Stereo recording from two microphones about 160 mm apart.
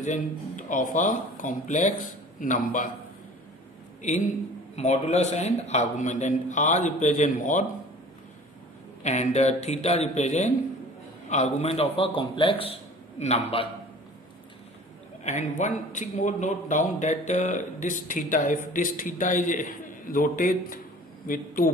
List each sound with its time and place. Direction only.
0.0 s a man's voice: 50° left (ahead or behind)
4.0 s a man's voice: 50° left (ahead or behind)
9.0 s a man's voice: 45° left (ahead or behind)
15.2 s a man's voice: 50° left (ahead or behind)